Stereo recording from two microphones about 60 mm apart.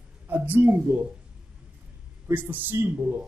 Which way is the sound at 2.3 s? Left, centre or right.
Right.